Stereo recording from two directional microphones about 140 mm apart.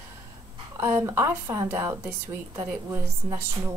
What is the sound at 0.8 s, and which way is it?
A woman's voice, 20° right (ahead or behind).